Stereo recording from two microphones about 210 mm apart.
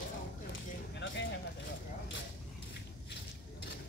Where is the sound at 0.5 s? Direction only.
60° left (ahead or behind).